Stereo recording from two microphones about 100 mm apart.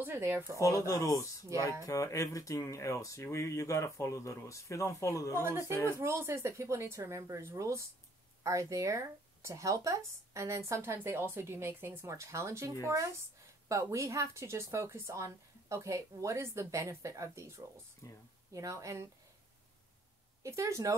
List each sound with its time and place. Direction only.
0.0 s speech: 25° right (ahead or behind)
0.8 s speech: 35° left (ahead or behind)
1.5 s speech: 30° right (ahead or behind)
1.9 s speech: 35° left (ahead or behind)
5.4 s speech: 25° right (ahead or behind)
18.0 s speech: 35° left (ahead or behind)
18.5 s speech: 35° right (ahead or behind)
20.4 s speech: 30° right (ahead or behind)